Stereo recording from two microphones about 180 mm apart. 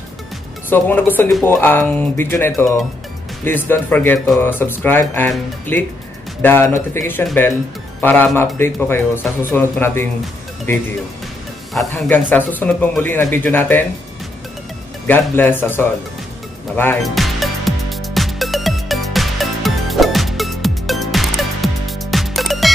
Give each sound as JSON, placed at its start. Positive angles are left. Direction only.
{"t": 0.7, "sound": "speech", "side_deg": 10}
{"t": 11.9, "sound": "speech", "side_deg": 10}
{"t": 15.0, "sound": "speech", "side_deg": 10}
{"t": 17.0, "sound": "music", "side_deg": 0}